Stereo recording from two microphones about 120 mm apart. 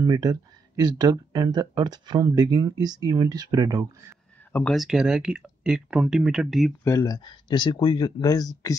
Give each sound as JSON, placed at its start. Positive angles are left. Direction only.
{"t": 0.0, "sound": "speech", "side_deg": -30}
{"t": 4.5, "sound": "speech", "side_deg": 15}
{"t": 4.7, "sound": "speech", "side_deg": -5}
{"t": 6.8, "sound": "speech", "side_deg": 30}